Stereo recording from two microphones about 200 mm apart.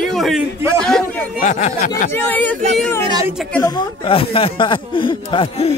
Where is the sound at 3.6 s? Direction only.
25° left (ahead or behind).